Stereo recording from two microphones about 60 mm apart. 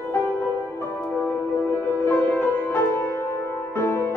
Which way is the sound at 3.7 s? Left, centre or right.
Left.